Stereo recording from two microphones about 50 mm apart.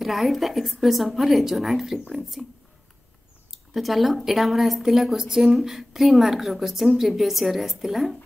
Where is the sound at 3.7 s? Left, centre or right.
Centre.